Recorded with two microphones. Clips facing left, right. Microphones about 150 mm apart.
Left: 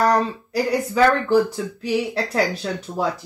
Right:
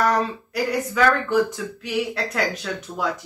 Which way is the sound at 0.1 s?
30° left (ahead or behind).